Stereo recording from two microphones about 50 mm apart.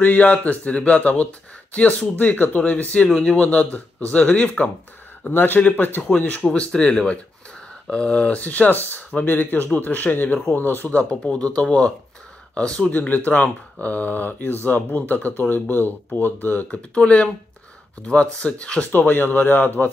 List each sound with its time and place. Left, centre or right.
0.0 s speech: left
5.3 s speech: left
5.6 s speech: left
6.8 s speech: left
11.0 s speech: left
16.6 s speech: left
18.9 s speech: left